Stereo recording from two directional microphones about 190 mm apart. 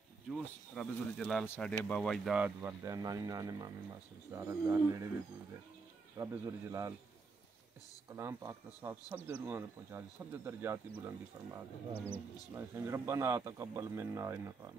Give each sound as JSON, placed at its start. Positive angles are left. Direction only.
{"t": 0.7, "sound": "speech", "side_deg": 0}
{"t": 6.1, "sound": "speech", "side_deg": -15}
{"t": 8.1, "sound": "speech", "side_deg": -15}
{"t": 12.0, "sound": "speech", "side_deg": 10}
{"t": 12.5, "sound": "speech", "side_deg": -15}